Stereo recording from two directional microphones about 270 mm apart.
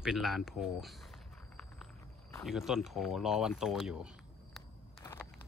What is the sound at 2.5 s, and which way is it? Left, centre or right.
Speech, centre.